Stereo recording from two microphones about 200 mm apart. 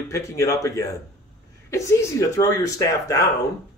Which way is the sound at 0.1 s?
15° left (ahead or behind).